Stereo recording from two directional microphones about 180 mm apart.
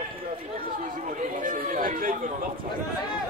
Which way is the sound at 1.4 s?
50° right (ahead or behind).